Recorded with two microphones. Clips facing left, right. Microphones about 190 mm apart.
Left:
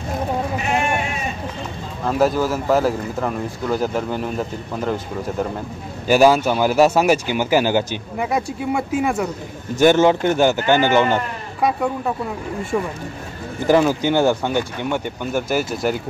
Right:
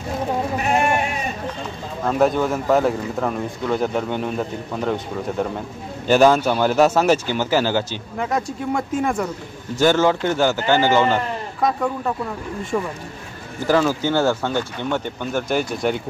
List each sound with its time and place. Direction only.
2.0 s speech: centre (ahead or behind)
9.8 s speech: 20° left (ahead or behind)
13.7 s speech: 15° left (ahead or behind)